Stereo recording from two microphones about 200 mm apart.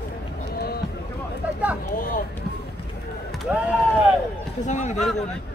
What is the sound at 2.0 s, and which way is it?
Speech, 45° left (ahead or behind).